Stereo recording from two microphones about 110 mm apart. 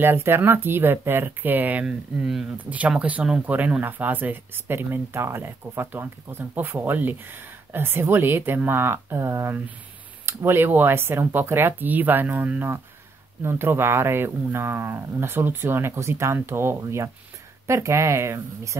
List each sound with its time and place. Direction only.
0.0 s speech: 20° right (ahead or behind)